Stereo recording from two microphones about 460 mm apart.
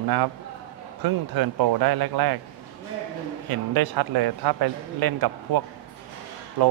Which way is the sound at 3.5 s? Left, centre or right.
Right.